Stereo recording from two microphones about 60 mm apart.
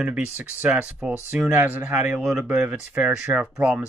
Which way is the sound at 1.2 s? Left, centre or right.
Right.